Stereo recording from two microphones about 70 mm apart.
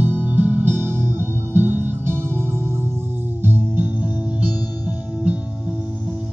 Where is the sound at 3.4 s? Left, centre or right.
Right.